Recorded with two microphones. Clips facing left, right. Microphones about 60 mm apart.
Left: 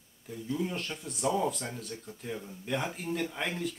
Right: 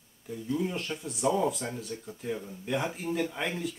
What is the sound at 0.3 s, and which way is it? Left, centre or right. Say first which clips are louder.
Speech: right 2 dB; centre.